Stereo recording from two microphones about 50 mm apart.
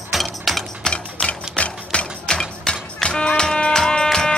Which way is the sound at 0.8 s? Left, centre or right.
Centre.